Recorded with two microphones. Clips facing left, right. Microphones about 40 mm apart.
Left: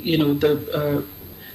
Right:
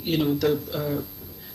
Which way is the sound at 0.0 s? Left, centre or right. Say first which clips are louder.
Left 4 dB; left.